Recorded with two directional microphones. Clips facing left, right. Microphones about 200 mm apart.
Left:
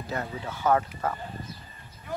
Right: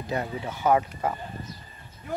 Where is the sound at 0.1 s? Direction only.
15° right (ahead or behind).